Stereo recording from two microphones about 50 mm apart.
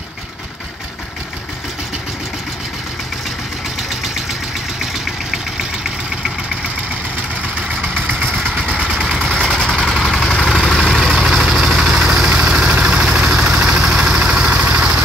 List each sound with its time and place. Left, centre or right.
4.9 s vehicle: centre
8.6 s vehicle: centre
9.0 s vehicle: centre; by 15.0 s right